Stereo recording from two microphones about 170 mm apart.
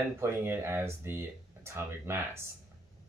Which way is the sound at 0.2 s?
15° right (ahead or behind).